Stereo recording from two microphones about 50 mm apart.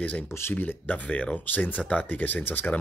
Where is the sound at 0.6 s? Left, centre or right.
Left.